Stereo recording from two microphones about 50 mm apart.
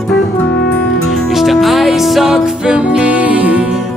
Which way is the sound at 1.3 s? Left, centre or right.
Centre.